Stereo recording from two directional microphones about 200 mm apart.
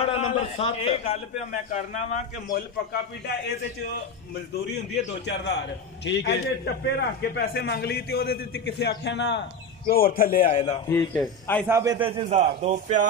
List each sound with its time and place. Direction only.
0.0 s a man's voice: 25° left (ahead or behind)
2.9 s a man's voice: 55° left (ahead or behind)
6.0 s a man's voice: 60° left (ahead or behind)
9.8 s a man's voice: 45° left (ahead or behind)
10.4 s a man's voice: 25° left (ahead or behind)
11.1 s speech: 5° left (ahead or behind)
11.6 s a man's voice: 15° right (ahead or behind); by 13.0 s 35° right (ahead or behind)